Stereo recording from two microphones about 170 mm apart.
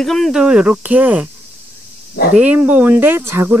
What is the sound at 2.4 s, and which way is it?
Speech, 10° right (ahead or behind).